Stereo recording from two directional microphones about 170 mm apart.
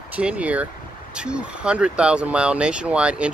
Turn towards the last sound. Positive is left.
turn(degrees=-5)  # may be behind; listen again after turning